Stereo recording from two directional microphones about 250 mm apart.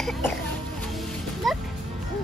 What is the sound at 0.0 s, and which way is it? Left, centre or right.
Music, centre.